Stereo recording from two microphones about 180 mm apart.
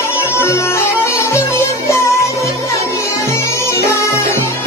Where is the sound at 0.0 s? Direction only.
15° left (ahead or behind).